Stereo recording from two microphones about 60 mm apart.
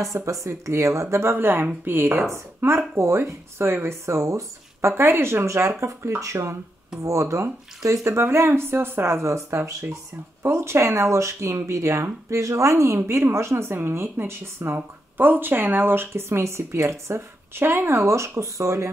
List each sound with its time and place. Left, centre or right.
0.0 s speech: right
4.9 s speech: right